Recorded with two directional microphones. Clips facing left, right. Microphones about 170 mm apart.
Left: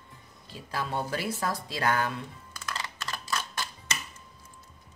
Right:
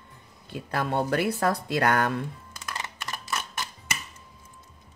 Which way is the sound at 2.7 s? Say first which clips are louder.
Right 2 dB; 20° right (ahead or behind).